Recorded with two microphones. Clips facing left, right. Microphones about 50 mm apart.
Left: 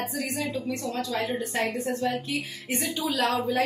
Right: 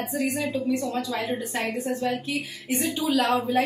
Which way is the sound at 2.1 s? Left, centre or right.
Left.